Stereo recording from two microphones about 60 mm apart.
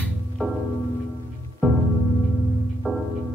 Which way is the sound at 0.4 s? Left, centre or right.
Centre.